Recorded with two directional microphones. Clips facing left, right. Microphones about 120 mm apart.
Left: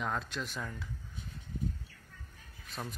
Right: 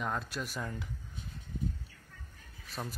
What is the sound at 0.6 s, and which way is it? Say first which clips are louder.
Speech: right 3 dB; 20° right (ahead or behind).